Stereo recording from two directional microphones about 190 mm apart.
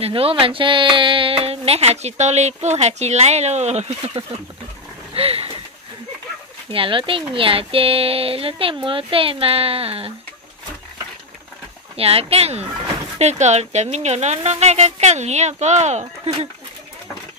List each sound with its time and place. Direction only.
0.0 s speech: 30° right (ahead or behind)
6.7 s speech: 25° right (ahead or behind)
12.0 s speech: 30° right (ahead or behind)